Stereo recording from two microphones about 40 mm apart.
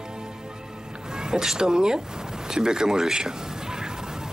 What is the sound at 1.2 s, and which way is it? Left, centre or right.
Speech, centre.